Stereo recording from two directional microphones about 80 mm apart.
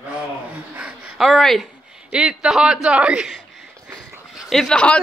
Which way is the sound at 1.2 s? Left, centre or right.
Centre.